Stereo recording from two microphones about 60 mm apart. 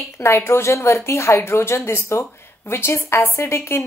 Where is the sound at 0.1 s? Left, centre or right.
Left.